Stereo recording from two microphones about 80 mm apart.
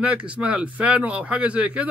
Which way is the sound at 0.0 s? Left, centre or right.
Centre.